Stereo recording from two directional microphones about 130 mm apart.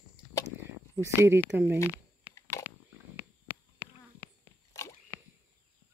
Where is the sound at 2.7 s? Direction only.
15° right (ahead or behind).